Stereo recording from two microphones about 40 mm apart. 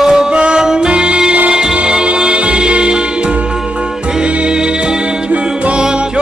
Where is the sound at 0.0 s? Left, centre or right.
Centre.